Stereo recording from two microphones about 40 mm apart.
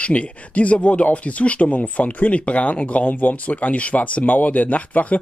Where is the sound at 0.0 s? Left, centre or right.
Left.